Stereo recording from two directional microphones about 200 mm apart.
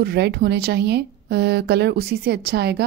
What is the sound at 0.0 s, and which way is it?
Speech, 50° right (ahead or behind).